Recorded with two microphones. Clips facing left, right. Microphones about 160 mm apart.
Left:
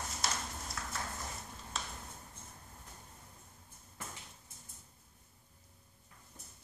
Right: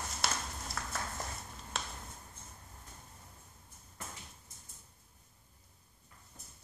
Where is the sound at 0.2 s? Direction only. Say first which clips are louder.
Right 2 dB; 65° right (ahead or behind).